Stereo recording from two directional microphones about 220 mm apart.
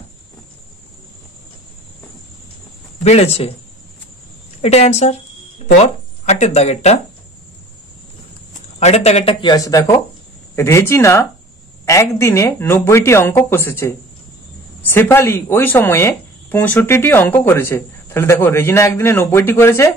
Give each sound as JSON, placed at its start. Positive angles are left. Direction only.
{"t": 3.0, "sound": "speech", "side_deg": 30}
{"t": 4.6, "sound": "speech", "side_deg": 30}
{"t": 6.2, "sound": "speech", "side_deg": 30}
{"t": 8.7, "sound": "speech", "side_deg": 30}